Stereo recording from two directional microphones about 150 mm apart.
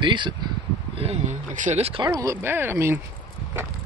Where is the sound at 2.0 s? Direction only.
20° right (ahead or behind).